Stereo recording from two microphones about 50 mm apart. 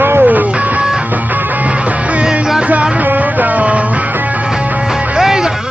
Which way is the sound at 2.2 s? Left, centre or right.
Centre.